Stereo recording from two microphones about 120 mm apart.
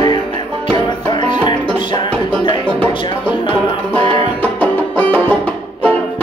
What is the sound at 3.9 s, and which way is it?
Music, 50° right (ahead or behind).